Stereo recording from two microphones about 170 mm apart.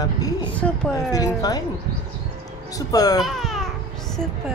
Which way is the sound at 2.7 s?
20° left (ahead or behind).